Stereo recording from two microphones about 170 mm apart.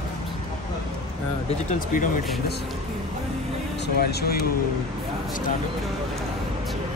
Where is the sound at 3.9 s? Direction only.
65° left (ahead or behind).